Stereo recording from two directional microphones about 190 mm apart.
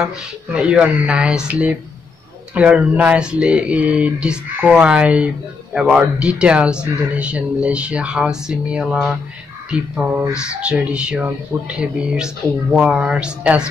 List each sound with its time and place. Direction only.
0.0 s speech: 5° right (ahead or behind)